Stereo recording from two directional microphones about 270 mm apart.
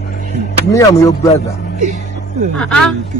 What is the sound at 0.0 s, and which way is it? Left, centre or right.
Music, left.